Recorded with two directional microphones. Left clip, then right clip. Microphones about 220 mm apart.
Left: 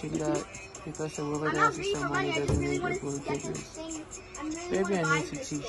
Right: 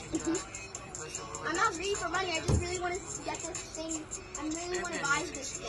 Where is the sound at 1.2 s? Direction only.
50° right (ahead or behind).